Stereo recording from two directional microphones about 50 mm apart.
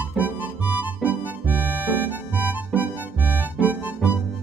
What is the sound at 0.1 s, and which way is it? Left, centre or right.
Music, right.